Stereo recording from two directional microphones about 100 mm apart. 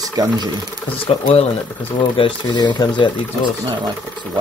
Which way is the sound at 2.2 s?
60° left (ahead or behind).